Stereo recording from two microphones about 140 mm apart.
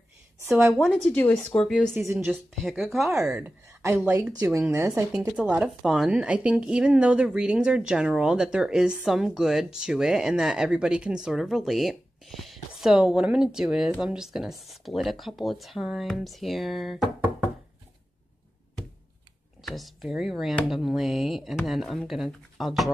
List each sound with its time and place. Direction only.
0.5 s a woman's voice: 20° right (ahead or behind)
0.7 s speech: centre (ahead or behind)
1.1 s speech: 10° left (ahead or behind)
2.0 s a woman's voice: 15° right (ahead or behind)
2.2 s speech: centre (ahead or behind)
3.8 s a woman's voice: 20° right (ahead or behind)
5.1 s speech: 5° right (ahead or behind)
19.6 s speech: centre (ahead or behind)